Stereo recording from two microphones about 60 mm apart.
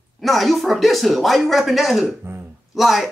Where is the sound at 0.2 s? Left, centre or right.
Centre.